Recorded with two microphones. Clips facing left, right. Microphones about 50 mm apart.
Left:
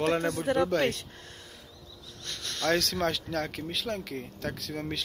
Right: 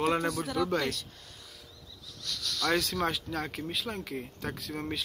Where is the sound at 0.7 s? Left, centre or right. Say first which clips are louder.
Left 4 dB; left.